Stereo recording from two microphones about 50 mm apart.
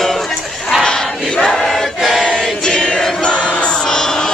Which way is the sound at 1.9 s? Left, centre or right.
Centre.